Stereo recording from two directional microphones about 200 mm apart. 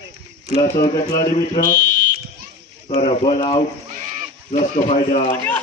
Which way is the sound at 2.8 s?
30° left (ahead or behind).